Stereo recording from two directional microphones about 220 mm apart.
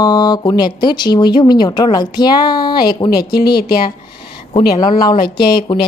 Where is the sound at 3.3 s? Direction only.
45° left (ahead or behind).